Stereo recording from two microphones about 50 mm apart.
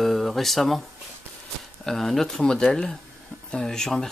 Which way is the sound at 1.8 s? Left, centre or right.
Centre.